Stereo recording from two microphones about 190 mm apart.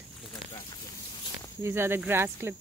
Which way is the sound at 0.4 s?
25° left (ahead or behind).